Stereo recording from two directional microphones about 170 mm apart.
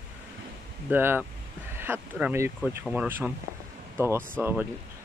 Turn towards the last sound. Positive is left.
turn(degrees=-10)  # may be behind; listen again after turning